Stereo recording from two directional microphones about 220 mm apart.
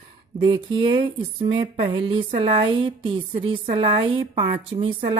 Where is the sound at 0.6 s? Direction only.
25° right (ahead or behind).